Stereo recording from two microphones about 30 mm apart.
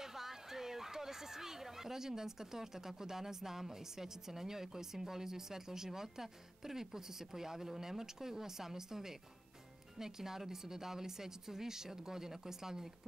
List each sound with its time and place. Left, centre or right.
0.0 s a woman's voice: centre